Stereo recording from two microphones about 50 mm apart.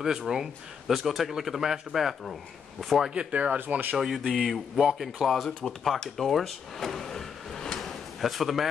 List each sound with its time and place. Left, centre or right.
0.0 s speech: centre
3.2 s speech: right
3.5 s speech: right
4.3 s speech: centre
5.5 s speech: centre
5.9 s vehicle: centre